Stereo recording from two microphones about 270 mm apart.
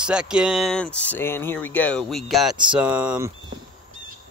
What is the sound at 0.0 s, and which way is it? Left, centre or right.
Speech, centre.